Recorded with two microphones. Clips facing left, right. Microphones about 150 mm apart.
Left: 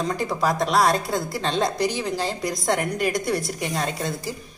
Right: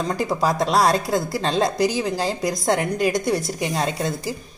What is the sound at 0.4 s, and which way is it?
A woman's voice, 35° right (ahead or behind).